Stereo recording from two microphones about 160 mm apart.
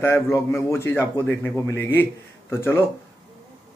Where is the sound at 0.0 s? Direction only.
15° left (ahead or behind).